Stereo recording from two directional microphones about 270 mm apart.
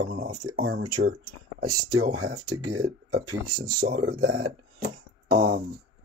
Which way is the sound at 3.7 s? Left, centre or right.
Right.